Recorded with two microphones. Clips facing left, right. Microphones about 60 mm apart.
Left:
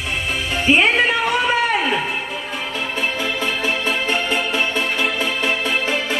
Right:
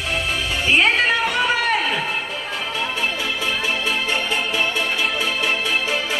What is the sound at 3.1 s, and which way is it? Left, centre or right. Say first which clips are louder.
Music: left 2 dB; left.